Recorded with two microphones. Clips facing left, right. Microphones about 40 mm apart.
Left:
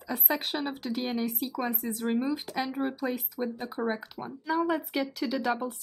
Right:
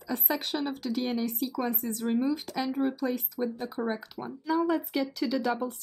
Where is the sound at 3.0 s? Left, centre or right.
Centre.